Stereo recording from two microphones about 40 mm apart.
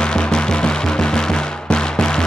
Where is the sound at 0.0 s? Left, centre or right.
Left.